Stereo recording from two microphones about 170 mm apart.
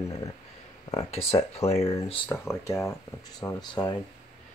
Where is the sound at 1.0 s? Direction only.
35° left (ahead or behind).